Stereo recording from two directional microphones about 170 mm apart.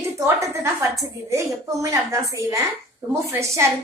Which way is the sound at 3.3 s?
15° right (ahead or behind).